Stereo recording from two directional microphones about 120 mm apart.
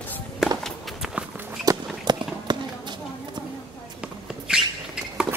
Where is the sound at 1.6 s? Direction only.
35° right (ahead or behind).